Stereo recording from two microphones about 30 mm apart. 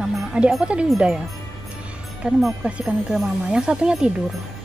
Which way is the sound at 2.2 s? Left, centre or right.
Right.